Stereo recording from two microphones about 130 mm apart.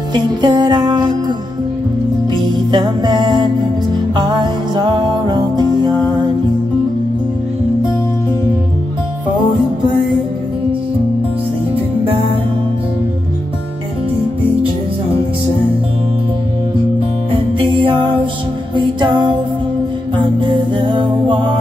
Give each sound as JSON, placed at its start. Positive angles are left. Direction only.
{"t": 0.1, "sound": "music", "side_deg": -35}
{"t": 2.4, "sound": "music", "side_deg": -35}
{"t": 17.3, "sound": "music", "side_deg": -40}
{"t": 20.3, "sound": "music", "side_deg": -35}